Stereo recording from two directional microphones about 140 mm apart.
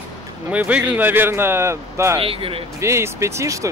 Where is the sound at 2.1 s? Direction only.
40° right (ahead or behind).